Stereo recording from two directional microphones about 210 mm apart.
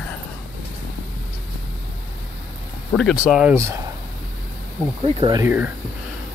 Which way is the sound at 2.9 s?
Centre (ahead or behind).